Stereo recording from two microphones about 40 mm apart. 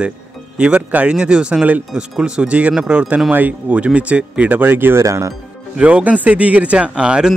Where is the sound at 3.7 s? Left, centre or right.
Right.